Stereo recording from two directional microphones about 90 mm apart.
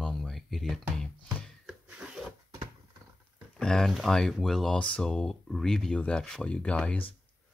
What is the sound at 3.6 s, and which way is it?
Speech, 5° left (ahead or behind).